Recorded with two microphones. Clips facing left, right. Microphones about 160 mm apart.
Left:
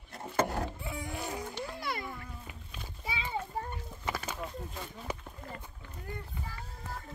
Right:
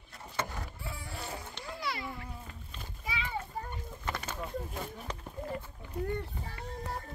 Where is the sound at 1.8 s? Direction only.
50° left (ahead or behind).